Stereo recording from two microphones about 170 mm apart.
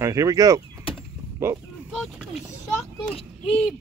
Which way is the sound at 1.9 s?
5° right (ahead or behind).